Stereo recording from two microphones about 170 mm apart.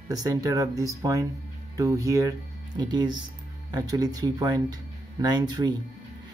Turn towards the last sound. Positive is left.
turn(degrees=-25)  # may be behind; listen again after turning